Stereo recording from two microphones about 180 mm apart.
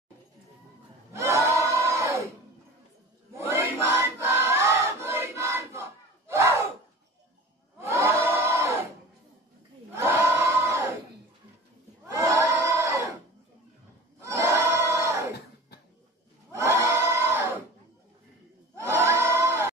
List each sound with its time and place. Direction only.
1.1 s crowd: 15° right (ahead or behind)
3.3 s a sound: 10° right (ahead or behind)
7.8 s crowd: 15° right (ahead or behind)
8.3 s a sound: 15° right (ahead or behind)
9.9 s choir: 15° right (ahead or behind)
12.1 s crowd: 15° right (ahead or behind)
14.2 s crowd: 15° right (ahead or behind)
16.5 s crowd: 15° right (ahead or behind)
18.8 s crowd: 15° right (ahead or behind)